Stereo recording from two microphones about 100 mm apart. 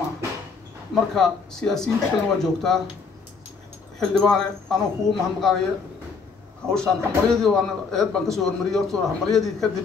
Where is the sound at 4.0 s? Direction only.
5° left (ahead or behind).